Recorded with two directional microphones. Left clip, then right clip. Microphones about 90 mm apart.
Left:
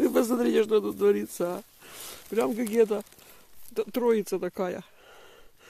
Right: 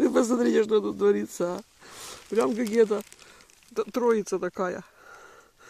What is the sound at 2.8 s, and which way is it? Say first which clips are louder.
Speech: right 1 dB; 35° right (ahead or behind).